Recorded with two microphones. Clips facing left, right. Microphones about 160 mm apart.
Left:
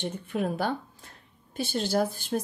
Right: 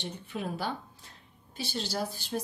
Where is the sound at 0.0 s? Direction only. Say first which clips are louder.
Left 7 dB; 50° left (ahead or behind).